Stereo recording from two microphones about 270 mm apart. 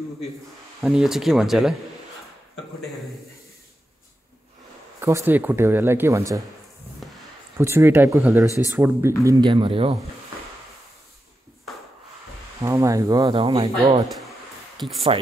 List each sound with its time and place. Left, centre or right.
0.7 s speech: centre
5.0 s speech: centre
7.0 s a sound: centre
7.5 s speech: centre
12.6 s speech: centre
15.1 s speech: right